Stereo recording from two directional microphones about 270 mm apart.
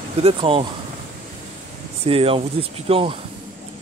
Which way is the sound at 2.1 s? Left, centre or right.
Right.